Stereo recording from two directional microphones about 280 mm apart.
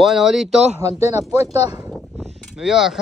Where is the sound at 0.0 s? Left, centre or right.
Centre.